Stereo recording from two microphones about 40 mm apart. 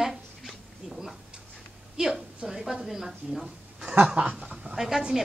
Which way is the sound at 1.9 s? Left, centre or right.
Centre.